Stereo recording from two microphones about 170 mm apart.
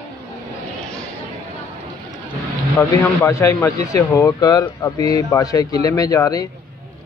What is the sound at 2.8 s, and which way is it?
Speech, 15° left (ahead or behind).